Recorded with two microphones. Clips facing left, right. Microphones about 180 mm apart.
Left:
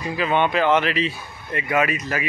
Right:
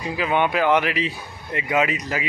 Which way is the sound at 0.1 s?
10° right (ahead or behind).